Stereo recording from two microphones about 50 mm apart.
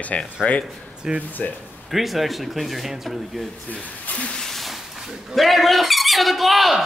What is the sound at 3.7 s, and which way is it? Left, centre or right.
Speech, left.